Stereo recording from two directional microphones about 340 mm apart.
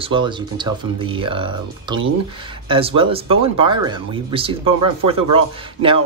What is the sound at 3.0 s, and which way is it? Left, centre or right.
Speech, centre.